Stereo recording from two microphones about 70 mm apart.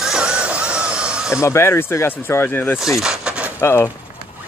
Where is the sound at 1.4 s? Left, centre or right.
Left.